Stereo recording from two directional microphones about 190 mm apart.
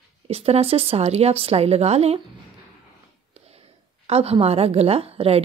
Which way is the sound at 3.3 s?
30° right (ahead or behind).